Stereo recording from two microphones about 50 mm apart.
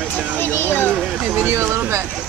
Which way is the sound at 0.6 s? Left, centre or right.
Left.